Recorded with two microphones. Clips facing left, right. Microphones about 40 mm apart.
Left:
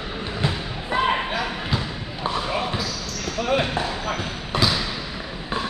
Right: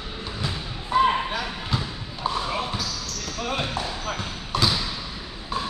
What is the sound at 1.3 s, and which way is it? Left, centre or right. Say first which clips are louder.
Basketball bounce: left 3 dB; centre.